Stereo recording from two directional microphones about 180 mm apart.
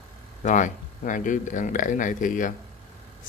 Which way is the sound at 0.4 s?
45° left (ahead or behind).